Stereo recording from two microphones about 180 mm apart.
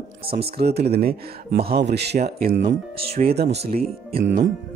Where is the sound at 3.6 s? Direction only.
35° right (ahead or behind).